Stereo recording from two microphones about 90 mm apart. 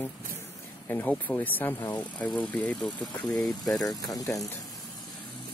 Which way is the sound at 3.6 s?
45° left (ahead or behind).